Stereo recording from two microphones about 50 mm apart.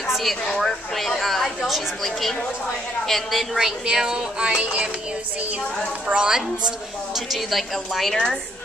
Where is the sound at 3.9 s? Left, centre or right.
Centre.